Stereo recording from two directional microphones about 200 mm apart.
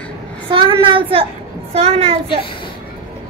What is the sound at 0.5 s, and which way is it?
A woman's voice, 25° right (ahead or behind).